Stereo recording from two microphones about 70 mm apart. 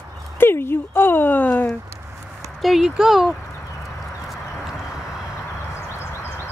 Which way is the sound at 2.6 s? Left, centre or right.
Centre.